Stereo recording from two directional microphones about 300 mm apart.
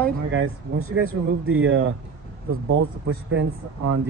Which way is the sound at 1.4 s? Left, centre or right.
Right.